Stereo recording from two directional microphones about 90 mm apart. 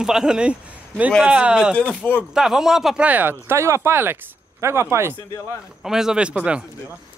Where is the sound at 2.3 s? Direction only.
5° right (ahead or behind); by 5.1 s 30° right (ahead or behind).